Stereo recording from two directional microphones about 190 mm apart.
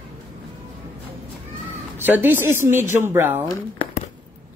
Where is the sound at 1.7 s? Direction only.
10° right (ahead or behind).